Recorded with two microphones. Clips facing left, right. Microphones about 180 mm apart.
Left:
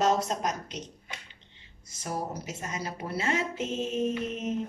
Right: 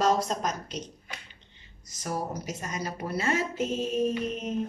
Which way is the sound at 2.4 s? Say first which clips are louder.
Right 2 dB; 25° left (ahead or behind).